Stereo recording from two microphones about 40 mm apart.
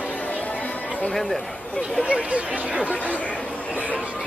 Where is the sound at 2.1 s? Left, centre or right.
Right.